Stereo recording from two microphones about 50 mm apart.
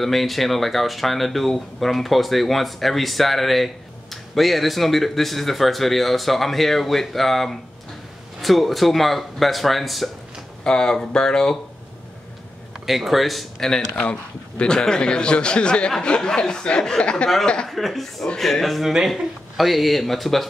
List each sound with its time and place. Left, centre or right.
0.0 s speech: centre
10.6 s a man's voice: centre
12.8 s speech: centre
13.7 s a man's voice: centre
17.6 s speech: centre